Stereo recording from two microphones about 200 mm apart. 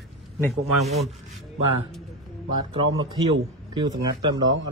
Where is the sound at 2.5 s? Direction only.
25° right (ahead or behind).